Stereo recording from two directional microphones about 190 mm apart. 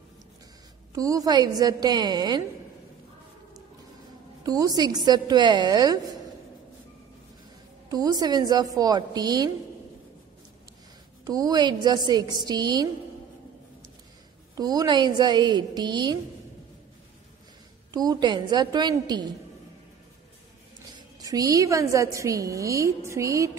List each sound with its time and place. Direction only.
0.9 s a woman's voice: 20° right (ahead or behind)
4.4 s a woman's voice: 20° right (ahead or behind)
7.9 s a woman's voice: 20° right (ahead or behind)
11.2 s a woman's voice: 20° right (ahead or behind)
14.6 s a woman's voice: 20° right (ahead or behind)
17.9 s a woman's voice: 20° right (ahead or behind)
21.2 s a woman's voice: 20° right (ahead or behind)